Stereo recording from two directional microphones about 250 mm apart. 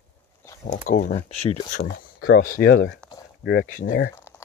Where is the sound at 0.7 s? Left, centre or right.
Left.